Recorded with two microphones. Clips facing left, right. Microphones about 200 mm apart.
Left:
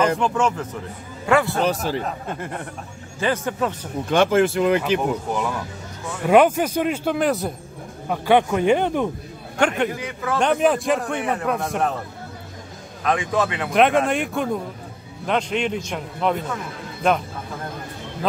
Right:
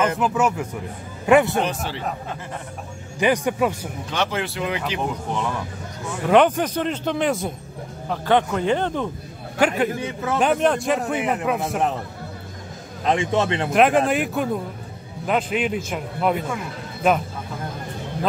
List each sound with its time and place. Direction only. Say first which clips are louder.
0.0 s a man's voice: left 1 dB; 5° right (ahead or behind)
1.2 s speech: right 3 dB; 20° right (ahead or behind)
1.6 s a man's voice: left 3 dB; 40° left (ahead or behind)
3.2 s a man's voice: right 3 dB; 15° right (ahead or behind)
4.1 s a man's voice: left 9 dB; 50° left (ahead or behind)
6.2 s speech: left 1 dB; 10° left (ahead or behind)
8.1 s speech: left 2 dB; 10° left (ahead or behind)
9.6 s a man's voice: right 1 dB; 5° right (ahead or behind)
9.9 s a man's voice: right 1 dB; 25° right (ahead or behind)
10.4 s a man's voice: left 1 dB; centre (ahead or behind)
13.0 s a man's voice: right 1 dB; 25° right (ahead or behind)
13.7 s a man's voice: even; centre (ahead or behind)